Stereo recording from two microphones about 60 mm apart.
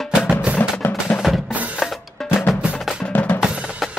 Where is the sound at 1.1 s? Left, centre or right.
Left.